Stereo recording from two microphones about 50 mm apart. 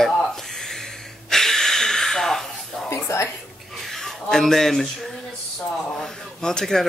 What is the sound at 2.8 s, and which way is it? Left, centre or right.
Speech, left.